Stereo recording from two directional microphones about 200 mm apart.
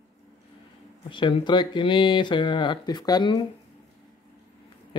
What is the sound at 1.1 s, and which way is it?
Speech, 25° left (ahead or behind).